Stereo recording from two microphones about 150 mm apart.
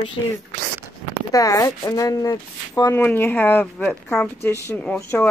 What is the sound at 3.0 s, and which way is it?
Speech, 10° left (ahead or behind).